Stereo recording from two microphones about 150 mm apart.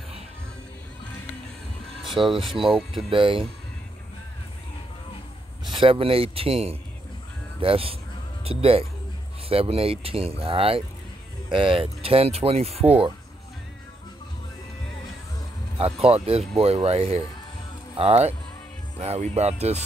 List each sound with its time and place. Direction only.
2.0 s a sound: centre (ahead or behind)
3.1 s speech: 35° right (ahead or behind)
5.8 s speech: 40° right (ahead or behind)
15.8 s speech: 40° right (ahead or behind)